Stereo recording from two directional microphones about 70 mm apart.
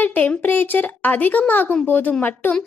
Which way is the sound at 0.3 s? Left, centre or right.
Left.